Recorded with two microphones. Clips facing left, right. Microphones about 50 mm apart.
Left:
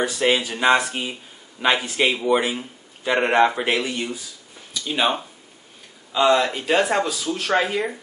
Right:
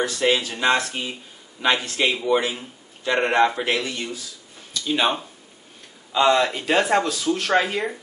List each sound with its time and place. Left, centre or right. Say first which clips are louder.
0.0 s speech: left 1 dB; centre
4.8 s speech: even; centre